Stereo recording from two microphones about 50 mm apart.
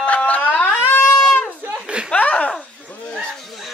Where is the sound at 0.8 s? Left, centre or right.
Left.